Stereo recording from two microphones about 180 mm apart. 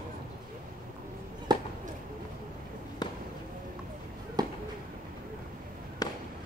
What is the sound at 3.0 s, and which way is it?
Basketball bounce, 25° left (ahead or behind).